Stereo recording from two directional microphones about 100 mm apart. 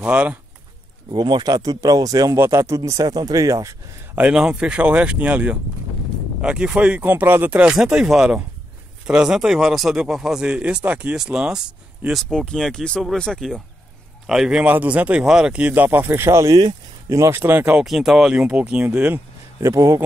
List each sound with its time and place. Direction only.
0.0 s speech: 10° right (ahead or behind)
1.1 s speech: 45° right (ahead or behind)
2.3 s speech: 25° right (ahead or behind)
4.1 s speech: 10° right (ahead or behind)
17.8 s speech: 5° right (ahead or behind)
18.9 s a sound: 15° right (ahead or behind)
19.7 s speech: 30° right (ahead or behind)